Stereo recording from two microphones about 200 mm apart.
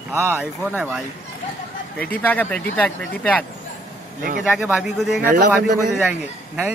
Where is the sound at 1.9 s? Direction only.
5° left (ahead or behind).